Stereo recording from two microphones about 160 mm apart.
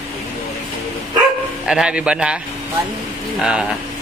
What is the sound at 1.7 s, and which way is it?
Speech, 5° right (ahead or behind).